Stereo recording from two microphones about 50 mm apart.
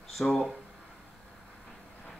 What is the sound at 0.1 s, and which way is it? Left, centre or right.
Speech, centre.